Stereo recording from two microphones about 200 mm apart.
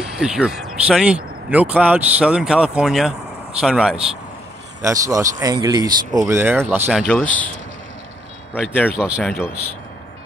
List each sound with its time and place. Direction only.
0.0 s speech: 5° right (ahead or behind)
4.8 s speech: 15° right (ahead or behind)
7.1 s speech: 5° left (ahead or behind)
8.5 s speech: 5° left (ahead or behind)
8.9 s speech: 5° right (ahead or behind)